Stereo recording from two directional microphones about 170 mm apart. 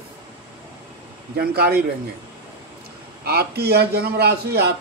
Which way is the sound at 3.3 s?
70° right (ahead or behind).